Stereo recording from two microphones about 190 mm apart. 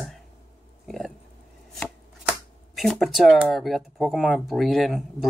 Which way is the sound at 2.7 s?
Centre (ahead or behind).